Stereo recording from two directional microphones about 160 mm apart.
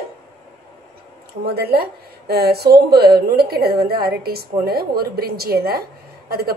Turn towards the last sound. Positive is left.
turn(degrees=-75)  # may be behind; listen again after turning